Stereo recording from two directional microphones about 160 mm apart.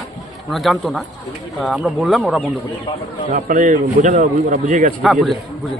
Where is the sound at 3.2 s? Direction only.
50° right (ahead or behind).